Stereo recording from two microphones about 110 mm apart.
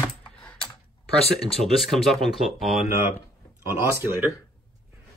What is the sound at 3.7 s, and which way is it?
Speech, 25° right (ahead or behind).